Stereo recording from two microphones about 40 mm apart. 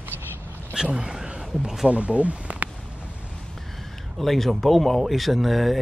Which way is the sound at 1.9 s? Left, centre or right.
Right.